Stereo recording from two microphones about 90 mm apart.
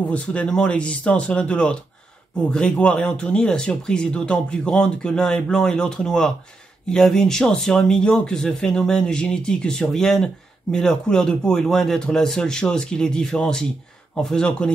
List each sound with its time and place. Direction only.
0.1 s speech: 15° left (ahead or behind)